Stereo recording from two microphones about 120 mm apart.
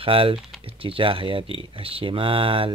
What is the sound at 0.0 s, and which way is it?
Speech, 50° right (ahead or behind).